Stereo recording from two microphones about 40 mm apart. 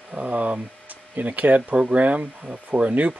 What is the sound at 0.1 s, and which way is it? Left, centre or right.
Speech, right.